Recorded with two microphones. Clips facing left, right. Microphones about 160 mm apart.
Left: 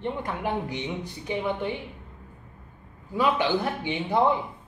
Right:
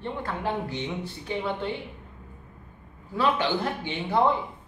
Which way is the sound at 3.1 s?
15° left (ahead or behind).